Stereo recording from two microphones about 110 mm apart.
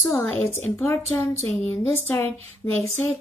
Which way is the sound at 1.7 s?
20° left (ahead or behind).